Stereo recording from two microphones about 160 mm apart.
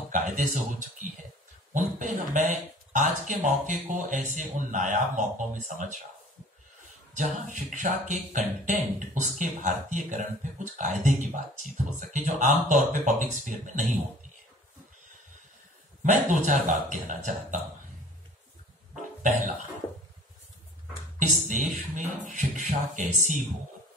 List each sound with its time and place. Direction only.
0.1 s speech: 55° right (ahead or behind)
7.2 s speech: 50° right (ahead or behind)
16.0 s speech: 50° right (ahead or behind)
21.2 s speech: 50° right (ahead or behind)